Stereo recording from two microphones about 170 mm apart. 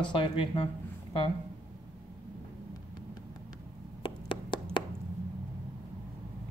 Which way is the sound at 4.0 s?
30° left (ahead or behind).